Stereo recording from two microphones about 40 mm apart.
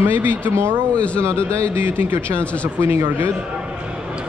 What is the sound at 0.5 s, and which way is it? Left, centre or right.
Speech, right.